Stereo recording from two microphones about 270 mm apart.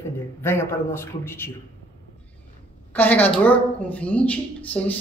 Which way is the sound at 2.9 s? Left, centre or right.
Centre.